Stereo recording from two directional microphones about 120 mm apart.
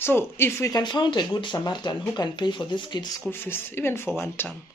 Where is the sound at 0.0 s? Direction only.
20° left (ahead or behind).